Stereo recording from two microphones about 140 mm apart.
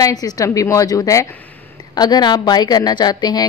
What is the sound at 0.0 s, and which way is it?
A woman's voice, 25° left (ahead or behind).